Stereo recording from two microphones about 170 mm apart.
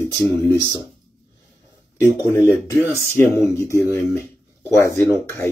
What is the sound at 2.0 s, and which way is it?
Speech, 10° right (ahead or behind).